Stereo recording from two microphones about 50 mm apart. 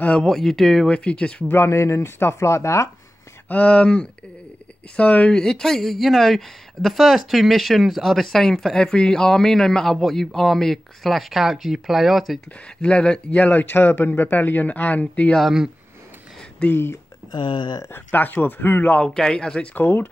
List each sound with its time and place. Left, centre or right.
0.0 s speech: centre
0.3 s speech: centre
0.8 s speech: left
1.5 s speech: left
3.4 s speech: left
5.3 s speech: centre
12.8 s speech: left
13.3 s speech: left
16.6 s speech: left
17.9 s speech: left
19.1 s speech: centre
19.8 s speech: left